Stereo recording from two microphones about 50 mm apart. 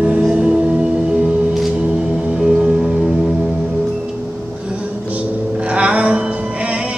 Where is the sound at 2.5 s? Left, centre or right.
Centre.